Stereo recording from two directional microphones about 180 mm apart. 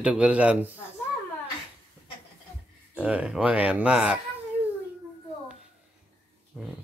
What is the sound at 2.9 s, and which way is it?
Speech, 5° right (ahead or behind).